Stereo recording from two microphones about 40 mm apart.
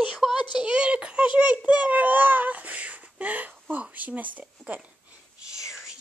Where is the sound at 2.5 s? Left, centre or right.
Right.